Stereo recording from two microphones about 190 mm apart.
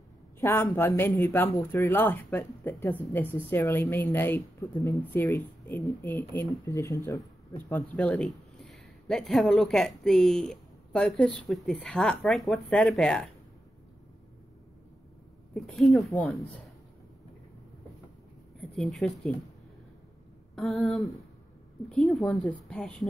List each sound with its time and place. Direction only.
0.4 s a woman's voice: 15° left (ahead or behind)
7.7 s speech: 5° left (ahead or behind)
15.5 s speech: centre (ahead or behind)
18.6 s speech: centre (ahead or behind)
20.5 s speech: centre (ahead or behind)